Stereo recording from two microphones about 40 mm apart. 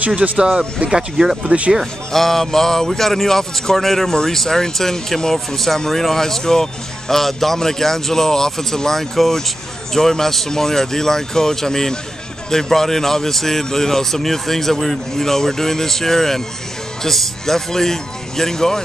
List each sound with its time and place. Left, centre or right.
0.0 s speech: right
1.1 s speech: centre
2.1 s speech: centre